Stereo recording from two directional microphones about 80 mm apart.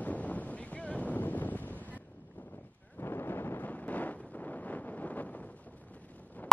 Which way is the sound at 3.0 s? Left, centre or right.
Left.